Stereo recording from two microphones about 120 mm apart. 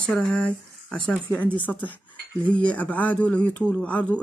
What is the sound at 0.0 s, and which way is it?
Speech, 10° left (ahead or behind).